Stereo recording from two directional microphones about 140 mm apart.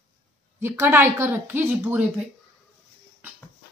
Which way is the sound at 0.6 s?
15° right (ahead or behind).